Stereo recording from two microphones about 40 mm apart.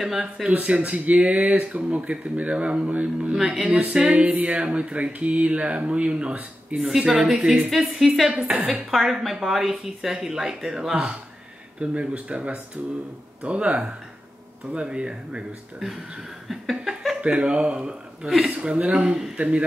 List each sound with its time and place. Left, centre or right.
0.0 s a woman's voice: centre
0.7 s speech: right
3.3 s a woman's voice: centre
4.3 s music: right
4.6 s speech: right
6.8 s a woman's voice: centre
8.5 s speech: right
8.9 s a woman's voice: centre
11.8 s speech: right
16.4 s chuckle: centre
17.2 s speech: right